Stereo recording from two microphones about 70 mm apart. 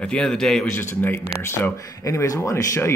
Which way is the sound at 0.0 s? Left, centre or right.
Centre.